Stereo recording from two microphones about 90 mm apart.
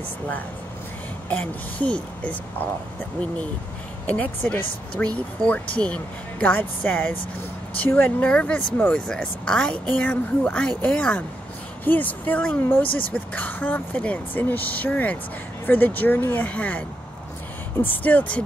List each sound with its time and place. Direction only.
1.3 s speech: 15° left (ahead or behind)
4.0 s speech: 15° left (ahead or behind)
17.8 s speech: 20° left (ahead or behind)